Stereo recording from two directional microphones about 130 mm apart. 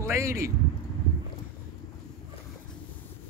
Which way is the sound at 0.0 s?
20° right (ahead or behind).